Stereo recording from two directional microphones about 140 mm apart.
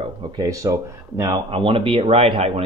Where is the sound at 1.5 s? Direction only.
40° right (ahead or behind).